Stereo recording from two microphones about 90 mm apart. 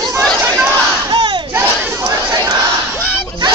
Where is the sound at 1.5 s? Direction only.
30° right (ahead or behind).